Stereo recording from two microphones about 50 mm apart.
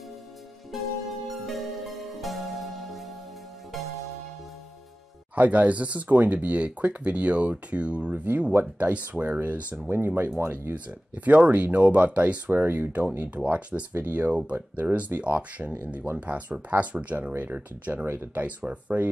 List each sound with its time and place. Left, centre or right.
0.7 s music: centre
5.3 s speech: right
9.8 s speech: right
10.7 s speech: right
12.4 s speech: right
13.2 s speech: right
13.9 s speech: right
18.0 s speech: right
18.3 s speech: right